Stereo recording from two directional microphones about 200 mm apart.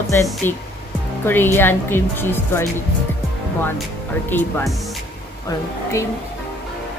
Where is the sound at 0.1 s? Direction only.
15° left (ahead or behind).